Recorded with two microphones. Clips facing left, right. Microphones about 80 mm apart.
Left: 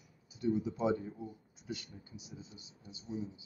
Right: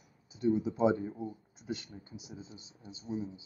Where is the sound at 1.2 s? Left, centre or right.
Right.